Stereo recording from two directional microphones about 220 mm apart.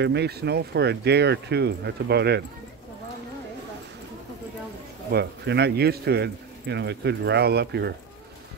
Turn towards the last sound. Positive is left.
turn(degrees=-50)  # may be behind; listen again after turning